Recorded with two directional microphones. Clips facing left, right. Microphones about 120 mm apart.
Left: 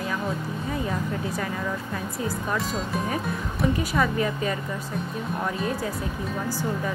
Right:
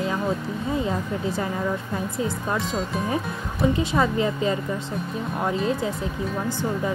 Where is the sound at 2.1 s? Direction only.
25° right (ahead or behind).